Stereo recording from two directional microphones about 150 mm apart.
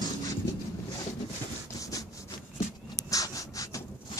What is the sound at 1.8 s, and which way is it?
Wood, 20° left (ahead or behind).